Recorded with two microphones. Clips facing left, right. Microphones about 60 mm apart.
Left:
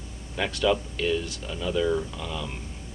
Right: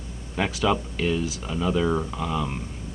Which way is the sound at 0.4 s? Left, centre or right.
Centre.